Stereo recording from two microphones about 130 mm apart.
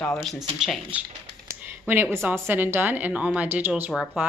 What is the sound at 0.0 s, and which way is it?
Speech, 5° left (ahead or behind).